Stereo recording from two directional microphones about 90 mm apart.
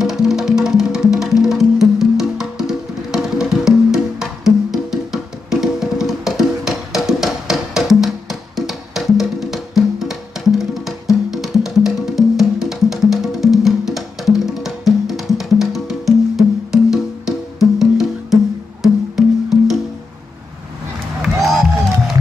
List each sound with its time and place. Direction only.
0.0 s music: 5° right (ahead or behind)
21.2 s crowd: centre (ahead or behind)